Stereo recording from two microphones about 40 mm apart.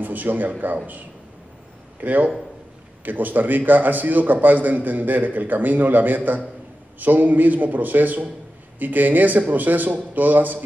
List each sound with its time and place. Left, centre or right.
0.0 s speech: right
2.0 s a man's voice: right